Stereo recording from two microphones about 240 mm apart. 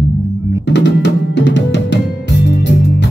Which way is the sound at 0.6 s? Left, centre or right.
Left.